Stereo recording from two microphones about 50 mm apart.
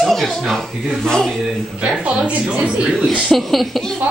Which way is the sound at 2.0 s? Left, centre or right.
Right.